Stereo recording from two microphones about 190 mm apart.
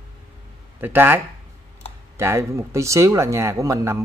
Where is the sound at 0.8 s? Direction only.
10° right (ahead or behind).